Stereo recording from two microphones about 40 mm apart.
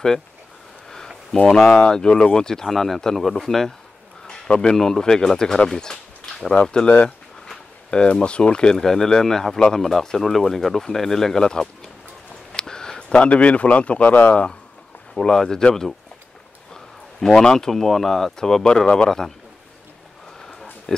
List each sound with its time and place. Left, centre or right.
0.8 s a sound: centre
1.3 s speech: centre
7.9 s speech: left
8.7 s speech: centre
12.5 s a sound: centre
13.1 s a man's voice: left
15.1 s speech: centre
17.4 s speech: centre
18.7 s speech: left
19.0 s speech: centre